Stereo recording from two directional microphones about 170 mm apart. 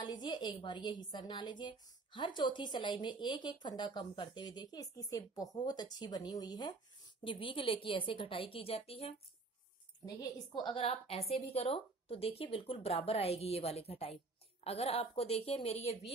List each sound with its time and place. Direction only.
0.0 s a woman's voice: 25° left (ahead or behind)